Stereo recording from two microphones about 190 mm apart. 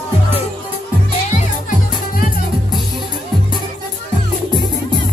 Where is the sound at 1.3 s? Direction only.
45° left (ahead or behind).